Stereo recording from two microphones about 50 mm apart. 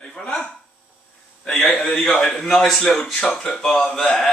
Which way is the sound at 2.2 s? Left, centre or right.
Centre.